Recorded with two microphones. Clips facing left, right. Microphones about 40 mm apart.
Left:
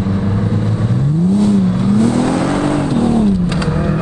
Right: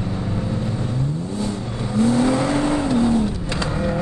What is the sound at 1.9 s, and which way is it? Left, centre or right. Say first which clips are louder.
Vehicle: left 1 dB; left.